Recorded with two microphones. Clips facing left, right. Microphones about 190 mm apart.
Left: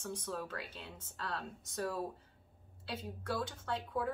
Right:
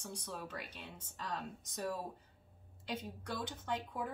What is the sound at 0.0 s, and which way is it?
Speech, 10° right (ahead or behind).